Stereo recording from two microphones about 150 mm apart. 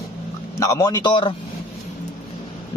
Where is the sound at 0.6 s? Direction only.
20° left (ahead or behind).